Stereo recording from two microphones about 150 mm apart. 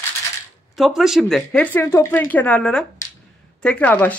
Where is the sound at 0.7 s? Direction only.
Centre (ahead or behind).